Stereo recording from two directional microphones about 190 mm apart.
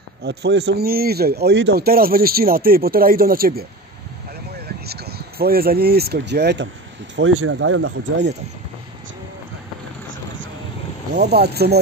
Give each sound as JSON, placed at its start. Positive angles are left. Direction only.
{"t": 0.2, "sound": "speech", "side_deg": -60}
{"t": 7.2, "sound": "speech", "side_deg": -90}
{"t": 11.1, "sound": "speech", "side_deg": -60}